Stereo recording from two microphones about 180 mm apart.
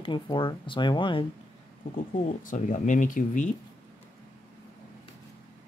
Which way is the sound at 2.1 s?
45° left (ahead or behind).